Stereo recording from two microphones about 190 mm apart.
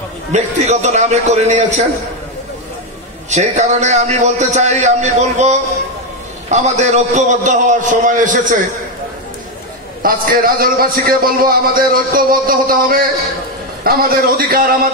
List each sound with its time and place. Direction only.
0.3 s a man's voice: 35° right (ahead or behind)
3.3 s a man's voice: 35° right (ahead or behind)
10.0 s a man's voice: 50° right (ahead or behind)